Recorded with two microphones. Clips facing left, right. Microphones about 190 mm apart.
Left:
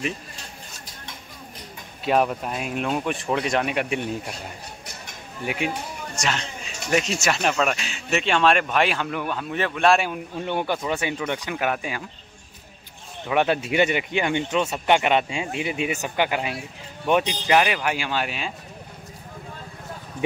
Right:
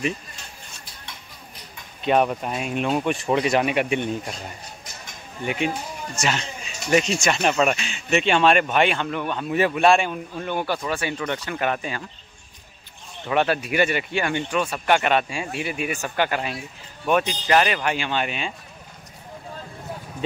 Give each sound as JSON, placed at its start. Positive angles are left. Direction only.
{"t": 2.0, "sound": "speech", "side_deg": 0}
{"t": 5.4, "sound": "speech", "side_deg": 5}
{"t": 9.5, "sound": "speech", "side_deg": -10}
{"t": 10.4, "sound": "speech", "side_deg": 20}
{"t": 13.3, "sound": "speech", "side_deg": 15}